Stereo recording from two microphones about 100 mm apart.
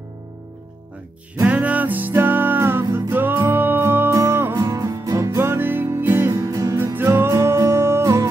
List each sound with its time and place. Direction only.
1.4 s music: 15° right (ahead or behind)
4.6 s music: 40° right (ahead or behind)
5.4 s music: 20° right (ahead or behind)
6.3 s music: 35° right (ahead or behind)
6.8 s music: 25° right (ahead or behind)